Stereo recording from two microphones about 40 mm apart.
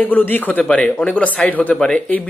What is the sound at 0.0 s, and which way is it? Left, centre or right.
Speech, left.